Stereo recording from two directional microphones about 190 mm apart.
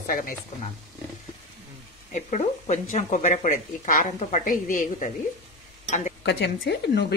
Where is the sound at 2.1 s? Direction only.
40° left (ahead or behind).